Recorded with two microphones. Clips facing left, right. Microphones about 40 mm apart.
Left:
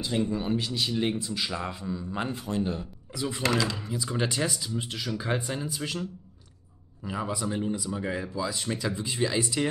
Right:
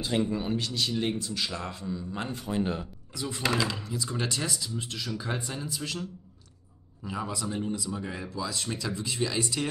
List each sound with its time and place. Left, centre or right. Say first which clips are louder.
0.4 s a man's voice: left 1 dB; centre
2.5 s speech: right 1 dB; right
3.2 s a man's voice: left 3 dB; centre
3.4 s speech: left 1 dB; centre
3.8 s a man's voice: left 3 dB; centre
7.1 s a man's voice: left 2 dB; centre